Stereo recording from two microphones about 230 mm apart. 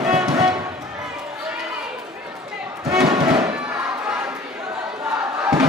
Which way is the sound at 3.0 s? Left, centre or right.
Centre.